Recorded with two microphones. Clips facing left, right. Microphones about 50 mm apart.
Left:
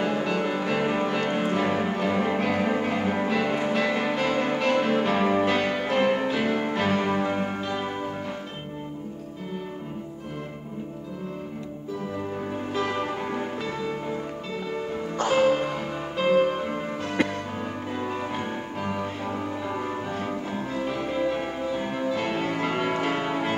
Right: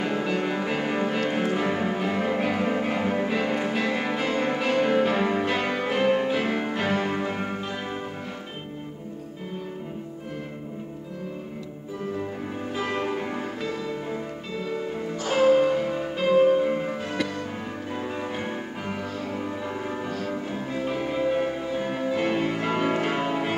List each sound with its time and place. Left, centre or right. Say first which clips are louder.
0.0 s music: left 1 dB; centre
12.7 s music: left 1 dB; centre
13.0 s music: even; centre
15.3 s music: right 4 dB; centre